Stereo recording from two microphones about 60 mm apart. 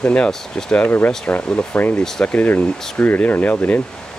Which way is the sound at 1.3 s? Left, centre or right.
Left.